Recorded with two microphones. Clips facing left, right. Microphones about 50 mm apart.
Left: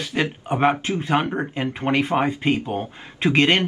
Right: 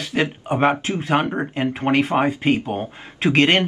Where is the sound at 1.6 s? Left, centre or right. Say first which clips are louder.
Right 3 dB; right.